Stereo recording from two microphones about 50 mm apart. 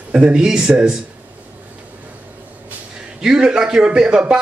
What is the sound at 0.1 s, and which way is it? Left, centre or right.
Speech, right.